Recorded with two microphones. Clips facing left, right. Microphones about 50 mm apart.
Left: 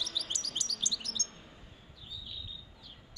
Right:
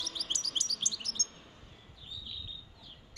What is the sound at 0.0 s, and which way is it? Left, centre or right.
Chirp, right.